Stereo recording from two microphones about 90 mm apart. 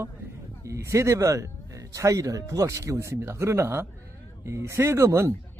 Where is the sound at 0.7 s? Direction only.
35° right (ahead or behind).